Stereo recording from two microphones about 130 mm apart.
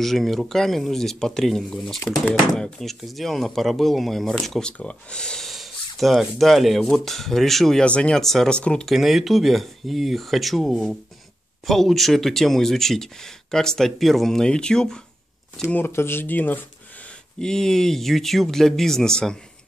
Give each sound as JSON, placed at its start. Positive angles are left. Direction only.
{"t": 0.0, "sound": "speech", "side_deg": 0}
{"t": 15.6, "sound": "speech", "side_deg": 15}